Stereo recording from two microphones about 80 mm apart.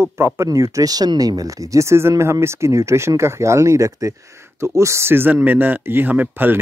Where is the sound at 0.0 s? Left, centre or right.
Right.